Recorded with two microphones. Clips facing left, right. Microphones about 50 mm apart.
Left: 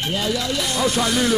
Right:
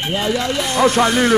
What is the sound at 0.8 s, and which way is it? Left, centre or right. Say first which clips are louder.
Speech: right 7 dB; right.